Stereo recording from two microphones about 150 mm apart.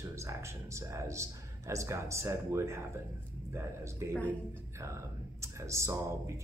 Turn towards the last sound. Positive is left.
turn(degrees=-20)  # may be behind; listen again after turning